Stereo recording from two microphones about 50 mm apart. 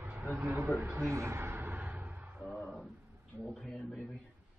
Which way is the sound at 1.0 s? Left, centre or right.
Right.